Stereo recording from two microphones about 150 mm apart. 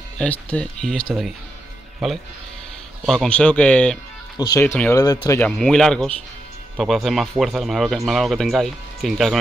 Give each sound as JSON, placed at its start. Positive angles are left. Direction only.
{"t": 0.2, "sound": "speech", "side_deg": 10}
{"t": 4.5, "sound": "speech", "side_deg": 15}
{"t": 5.4, "sound": "speech", "side_deg": 5}